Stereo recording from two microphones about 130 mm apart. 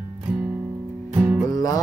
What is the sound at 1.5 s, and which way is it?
Music, 25° left (ahead or behind).